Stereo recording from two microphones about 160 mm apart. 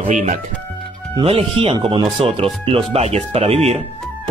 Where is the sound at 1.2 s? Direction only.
35° right (ahead or behind).